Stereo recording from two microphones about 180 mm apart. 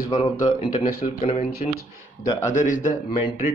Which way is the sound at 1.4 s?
60° left (ahead or behind).